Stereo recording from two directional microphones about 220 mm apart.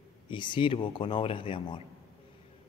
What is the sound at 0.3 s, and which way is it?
Speech, 20° left (ahead or behind).